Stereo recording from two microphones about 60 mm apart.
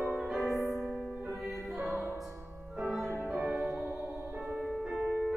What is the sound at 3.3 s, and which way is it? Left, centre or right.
Music, centre.